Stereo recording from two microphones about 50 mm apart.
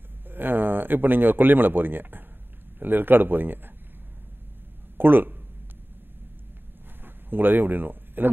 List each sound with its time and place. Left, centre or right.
0.3 s speech: right
4.9 s speech: right
7.1 s speech: right